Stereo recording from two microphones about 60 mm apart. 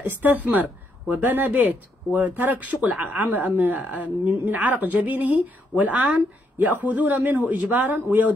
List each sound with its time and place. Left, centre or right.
0.0 s speech: right